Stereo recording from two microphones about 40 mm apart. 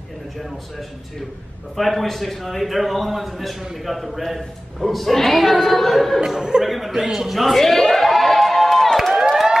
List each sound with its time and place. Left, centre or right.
1.8 s speech: centre
6.2 s speech: centre
6.6 s a sound: centre